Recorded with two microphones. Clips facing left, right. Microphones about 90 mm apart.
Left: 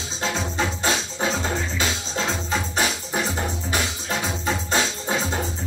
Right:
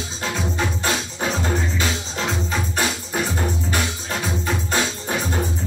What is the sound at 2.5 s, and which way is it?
Music, 20° left (ahead or behind).